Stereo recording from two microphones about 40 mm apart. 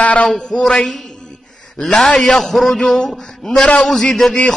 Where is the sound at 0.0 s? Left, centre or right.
Left.